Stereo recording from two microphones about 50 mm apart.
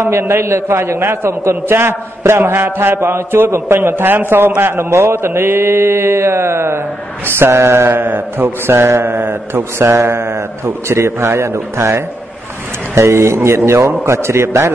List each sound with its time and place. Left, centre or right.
0.0 s a man's voice: right
8.7 s a man's voice: right